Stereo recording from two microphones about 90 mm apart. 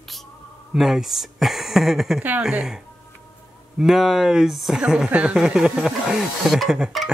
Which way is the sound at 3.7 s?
5° right (ahead or behind).